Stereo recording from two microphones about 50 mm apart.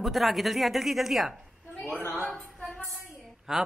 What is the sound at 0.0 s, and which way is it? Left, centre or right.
A man's voice, centre.